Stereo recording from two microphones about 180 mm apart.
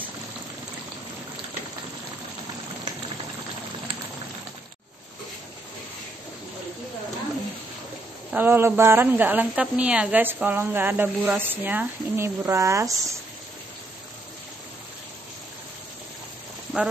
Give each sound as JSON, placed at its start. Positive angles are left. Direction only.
{"t": 8.3, "sound": "a woman's voice", "side_deg": -10}
{"t": 16.7, "sound": "speech", "side_deg": -5}